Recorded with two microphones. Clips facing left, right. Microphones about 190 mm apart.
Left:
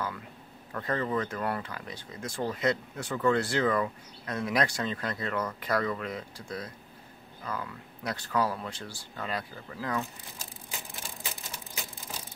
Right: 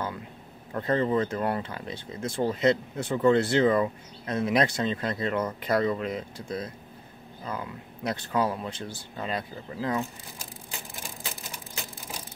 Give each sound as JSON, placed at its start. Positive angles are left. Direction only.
{"t": 0.7, "sound": "speech", "side_deg": -25}